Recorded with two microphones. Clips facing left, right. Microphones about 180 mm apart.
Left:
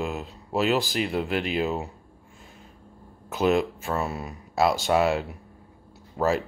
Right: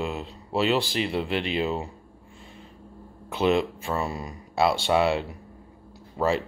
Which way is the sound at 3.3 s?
5° left (ahead or behind).